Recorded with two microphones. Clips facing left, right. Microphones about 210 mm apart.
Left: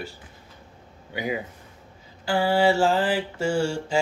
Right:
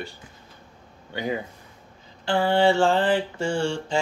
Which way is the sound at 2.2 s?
5° left (ahead or behind).